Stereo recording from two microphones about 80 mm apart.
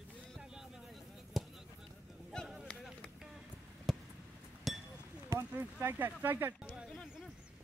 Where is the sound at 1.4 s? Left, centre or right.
Centre.